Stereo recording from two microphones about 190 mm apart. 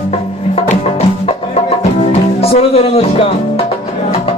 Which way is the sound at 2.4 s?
30° left (ahead or behind).